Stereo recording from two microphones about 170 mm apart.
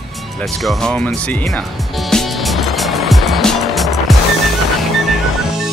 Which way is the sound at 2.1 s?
Centre (ahead or behind).